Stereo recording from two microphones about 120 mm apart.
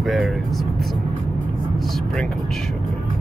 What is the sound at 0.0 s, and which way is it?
Vehicle, centre (ahead or behind).